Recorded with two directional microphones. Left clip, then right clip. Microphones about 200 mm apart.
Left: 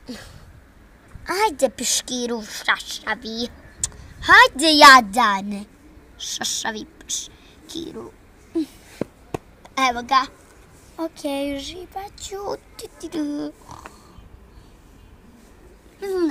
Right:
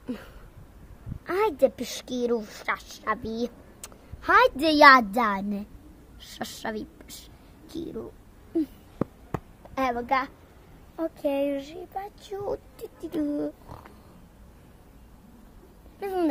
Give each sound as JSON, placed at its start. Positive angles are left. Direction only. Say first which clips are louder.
{"t": 0.0, "sound": "a sound", "louder": "left 1 dB", "side_deg": -5}
{"t": 1.2, "sound": "a child's voice", "louder": "left 3 dB", "side_deg": 5}
{"t": 9.8, "sound": "speech", "louder": "left 7 dB", "side_deg": 5}
{"t": 16.0, "sound": "a child's voice", "louder": "left 5 dB", "side_deg": -20}